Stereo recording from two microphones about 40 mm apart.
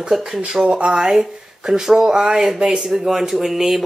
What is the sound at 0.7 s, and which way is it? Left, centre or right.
Speech, right.